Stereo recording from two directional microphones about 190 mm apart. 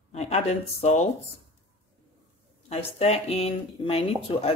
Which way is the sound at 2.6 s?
35° left (ahead or behind).